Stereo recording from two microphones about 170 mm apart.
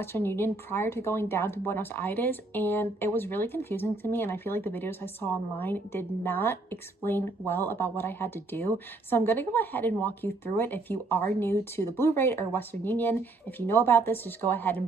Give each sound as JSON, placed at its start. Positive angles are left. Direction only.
{"t": 0.0, "sound": "a woman's voice", "side_deg": 15}